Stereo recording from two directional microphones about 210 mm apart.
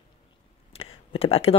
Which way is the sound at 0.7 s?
30° left (ahead or behind).